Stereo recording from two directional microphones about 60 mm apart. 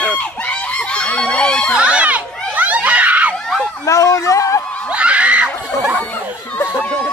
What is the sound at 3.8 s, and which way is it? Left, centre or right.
Speech, left.